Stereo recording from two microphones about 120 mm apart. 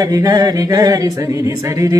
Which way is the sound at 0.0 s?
30° right (ahead or behind).